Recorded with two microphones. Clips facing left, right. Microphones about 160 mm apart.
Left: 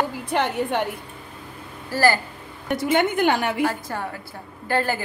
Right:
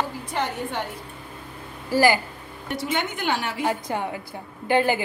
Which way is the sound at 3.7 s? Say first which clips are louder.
Right 3 dB; 15° right (ahead or behind).